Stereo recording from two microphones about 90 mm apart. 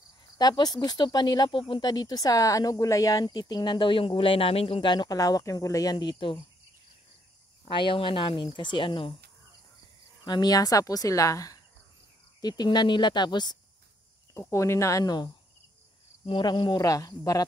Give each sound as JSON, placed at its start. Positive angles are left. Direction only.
{"t": 0.4, "sound": "speech", "side_deg": 50}
{"t": 1.9, "sound": "speech", "side_deg": 50}
{"t": 7.6, "sound": "speech", "side_deg": 70}
{"t": 10.2, "sound": "speech", "side_deg": 50}
{"t": 12.4, "sound": "speech", "side_deg": 50}
{"t": 14.3, "sound": "speech", "side_deg": 30}
{"t": 16.3, "sound": "speech", "side_deg": 60}